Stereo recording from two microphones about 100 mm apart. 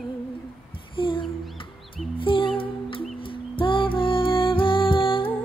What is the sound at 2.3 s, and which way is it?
Music, 60° left (ahead or behind).